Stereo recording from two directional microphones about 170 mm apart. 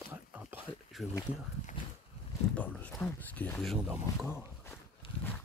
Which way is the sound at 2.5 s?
10° left (ahead or behind).